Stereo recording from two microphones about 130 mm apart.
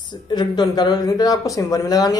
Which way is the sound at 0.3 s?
30° left (ahead or behind).